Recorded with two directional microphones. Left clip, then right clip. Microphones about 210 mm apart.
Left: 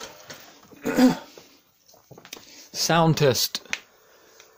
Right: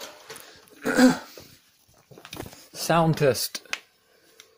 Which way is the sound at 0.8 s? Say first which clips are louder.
Right 1 dB; 15° left (ahead or behind).